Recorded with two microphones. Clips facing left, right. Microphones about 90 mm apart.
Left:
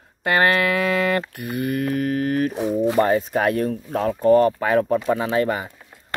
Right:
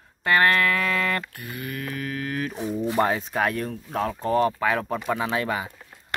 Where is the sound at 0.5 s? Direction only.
15° left (ahead or behind).